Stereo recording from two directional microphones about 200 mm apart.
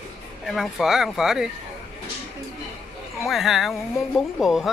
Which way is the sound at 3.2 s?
Centre (ahead or behind).